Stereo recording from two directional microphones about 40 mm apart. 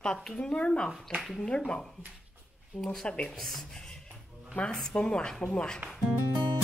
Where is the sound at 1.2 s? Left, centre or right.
Centre.